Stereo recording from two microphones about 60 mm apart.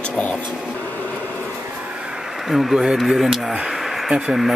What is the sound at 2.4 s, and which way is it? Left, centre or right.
Speech, centre.